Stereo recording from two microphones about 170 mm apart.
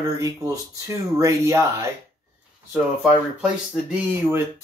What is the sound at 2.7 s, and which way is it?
Speech, 5° right (ahead or behind).